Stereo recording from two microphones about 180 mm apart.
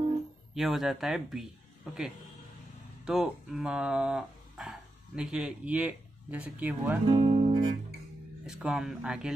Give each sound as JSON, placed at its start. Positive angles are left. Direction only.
{"t": 0.6, "sound": "speech", "side_deg": 0}
{"t": 3.1, "sound": "speech", "side_deg": 0}
{"t": 7.1, "sound": "music", "side_deg": -35}
{"t": 8.5, "sound": "speech", "side_deg": 0}